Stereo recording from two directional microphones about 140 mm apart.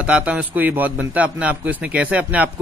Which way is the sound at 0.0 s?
10° right (ahead or behind).